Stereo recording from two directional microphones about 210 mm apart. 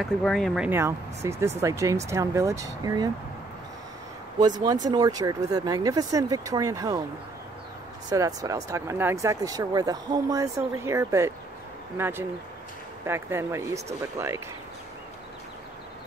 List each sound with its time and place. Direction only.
0.0 s speech: centre (ahead or behind)
0.7 s speech: 10° right (ahead or behind)
4.4 s speech: 20° right (ahead or behind)
8.1 s speech: 15° right (ahead or behind)